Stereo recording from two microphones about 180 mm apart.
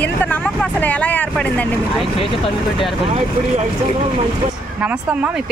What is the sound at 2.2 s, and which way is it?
Speech, 30° left (ahead or behind).